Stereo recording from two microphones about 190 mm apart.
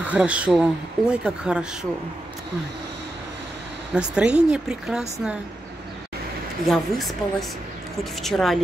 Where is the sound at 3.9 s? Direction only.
5° right (ahead or behind).